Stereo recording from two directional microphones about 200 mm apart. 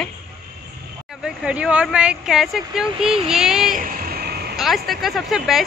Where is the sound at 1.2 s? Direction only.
5° right (ahead or behind).